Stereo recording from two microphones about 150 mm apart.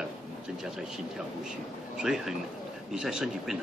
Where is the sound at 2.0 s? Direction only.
5° right (ahead or behind).